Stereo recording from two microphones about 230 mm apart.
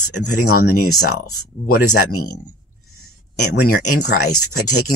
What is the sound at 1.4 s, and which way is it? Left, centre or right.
Speech, left.